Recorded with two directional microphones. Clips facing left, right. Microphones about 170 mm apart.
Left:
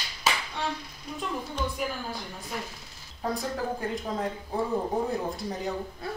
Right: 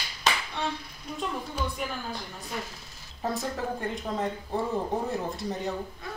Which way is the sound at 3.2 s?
Centre (ahead or behind).